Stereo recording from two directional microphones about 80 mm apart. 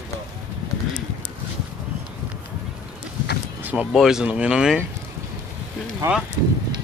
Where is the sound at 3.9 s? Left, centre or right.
Centre.